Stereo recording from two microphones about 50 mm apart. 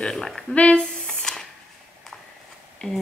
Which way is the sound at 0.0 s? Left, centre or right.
Centre.